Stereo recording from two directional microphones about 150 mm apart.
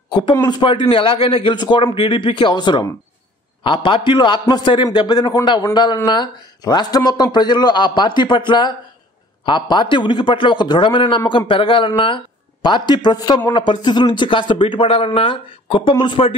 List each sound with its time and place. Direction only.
0.1 s speech: 30° left (ahead or behind)